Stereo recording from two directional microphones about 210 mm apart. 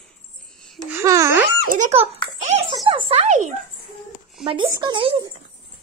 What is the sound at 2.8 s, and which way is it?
Speech, 25° right (ahead or behind).